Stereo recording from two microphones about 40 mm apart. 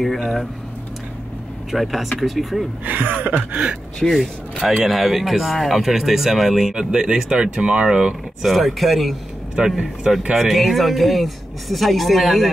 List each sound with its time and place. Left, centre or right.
1.7 s speech: centre
2.8 s a sound: right
4.1 s speech: centre
6.7 s speech: centre
8.5 s speech: centre
9.6 s speech: centre